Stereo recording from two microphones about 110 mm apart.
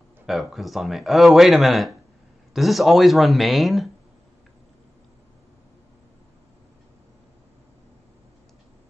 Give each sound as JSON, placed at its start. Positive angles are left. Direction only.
{"t": 0.3, "sound": "speech", "side_deg": 0}